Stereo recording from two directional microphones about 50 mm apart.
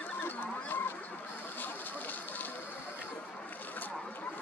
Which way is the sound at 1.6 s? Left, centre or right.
Left.